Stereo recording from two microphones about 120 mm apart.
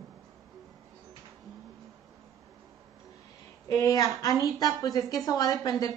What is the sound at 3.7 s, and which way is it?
A woman's voice, 30° left (ahead or behind).